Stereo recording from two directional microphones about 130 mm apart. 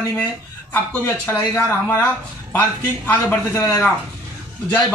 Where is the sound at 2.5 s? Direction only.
15° left (ahead or behind).